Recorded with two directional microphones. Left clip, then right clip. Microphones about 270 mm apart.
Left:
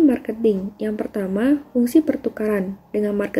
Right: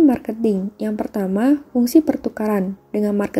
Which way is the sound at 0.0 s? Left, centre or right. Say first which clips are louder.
Right 1 dB; centre.